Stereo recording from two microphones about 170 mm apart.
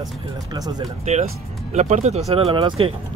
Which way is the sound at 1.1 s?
40° right (ahead or behind).